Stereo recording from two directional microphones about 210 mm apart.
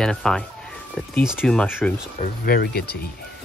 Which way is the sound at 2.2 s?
45° left (ahead or behind).